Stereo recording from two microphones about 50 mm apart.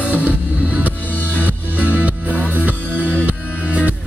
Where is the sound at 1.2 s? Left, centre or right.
Left.